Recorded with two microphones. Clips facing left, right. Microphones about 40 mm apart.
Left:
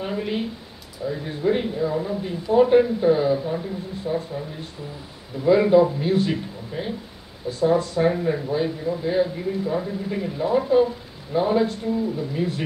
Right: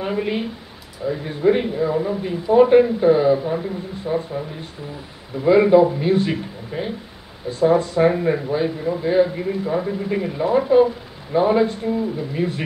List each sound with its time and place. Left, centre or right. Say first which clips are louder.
0.0 s speech: right 3 dB; centre
5.5 s speech: right 3 dB; centre
8.1 s speech: right 3 dB; right